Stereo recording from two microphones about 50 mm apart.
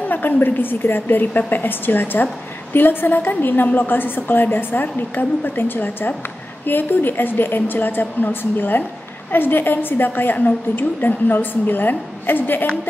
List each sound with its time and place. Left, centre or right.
0.0 s a woman's voice: left